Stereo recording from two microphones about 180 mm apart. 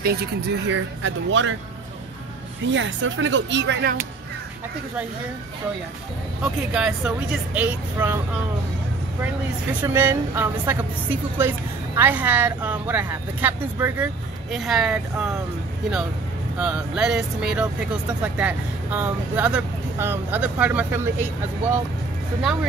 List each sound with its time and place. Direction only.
0.0 s speech: 60° right (ahead or behind); by 1.5 s 90° right
2.6 s speech: 90° right
6.7 s speech: 5° right (ahead or behind)
9.2 s speech: 10° right (ahead or behind)
16.5 s speech: 5° right (ahead or behind)